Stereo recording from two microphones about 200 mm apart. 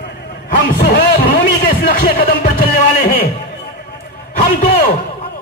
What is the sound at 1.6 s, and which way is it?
Speech, 50° left (ahead or behind).